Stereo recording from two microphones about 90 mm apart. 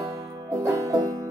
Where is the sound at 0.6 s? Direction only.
40° right (ahead or behind).